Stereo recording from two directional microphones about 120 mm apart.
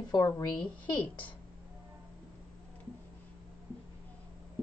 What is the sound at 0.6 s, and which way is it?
Speech, 10° left (ahead or behind).